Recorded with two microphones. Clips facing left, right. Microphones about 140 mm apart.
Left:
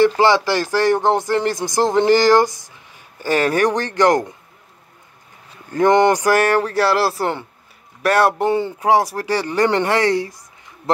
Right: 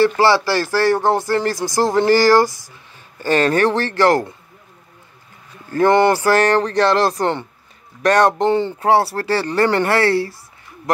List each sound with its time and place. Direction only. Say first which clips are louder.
0.0 s speech: even; 15° left (ahead or behind)
5.7 s speech: even; 15° left (ahead or behind)